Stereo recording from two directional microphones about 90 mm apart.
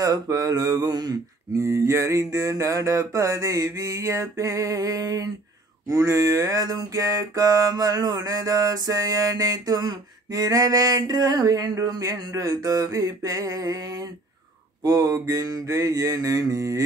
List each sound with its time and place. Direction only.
0.0 s music: 40° right (ahead or behind)